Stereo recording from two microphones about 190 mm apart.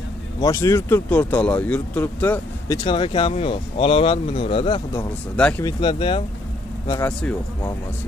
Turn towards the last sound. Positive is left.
turn(degrees=5)  # may be behind; listen again after turning